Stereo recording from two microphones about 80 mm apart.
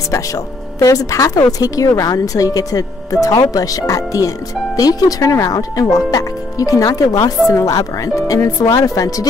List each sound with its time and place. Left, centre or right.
0.1 s speech: left